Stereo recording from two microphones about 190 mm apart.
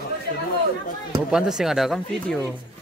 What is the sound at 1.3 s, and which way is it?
Speech, centre (ahead or behind).